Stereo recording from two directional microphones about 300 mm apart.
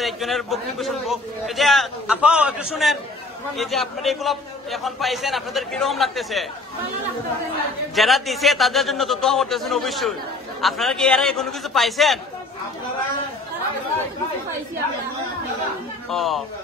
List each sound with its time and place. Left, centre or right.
0.0 s a man's voice: centre
1.6 s a sound: centre
3.5 s a man's voice: centre
7.9 s a man's voice: centre
16.1 s a man's voice: centre